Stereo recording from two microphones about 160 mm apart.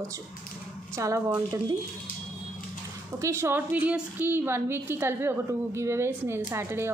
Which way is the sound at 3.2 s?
15° right (ahead or behind).